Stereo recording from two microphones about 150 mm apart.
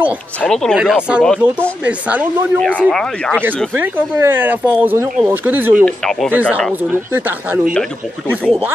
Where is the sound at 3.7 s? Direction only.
10° right (ahead or behind).